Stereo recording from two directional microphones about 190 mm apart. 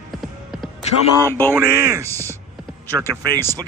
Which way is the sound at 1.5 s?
15° right (ahead or behind).